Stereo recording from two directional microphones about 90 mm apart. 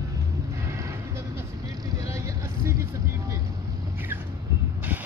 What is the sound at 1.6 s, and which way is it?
Vehicle, 40° right (ahead or behind).